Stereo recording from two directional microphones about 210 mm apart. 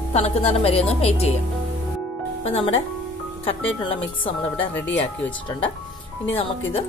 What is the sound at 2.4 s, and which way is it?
Speech, 30° left (ahead or behind).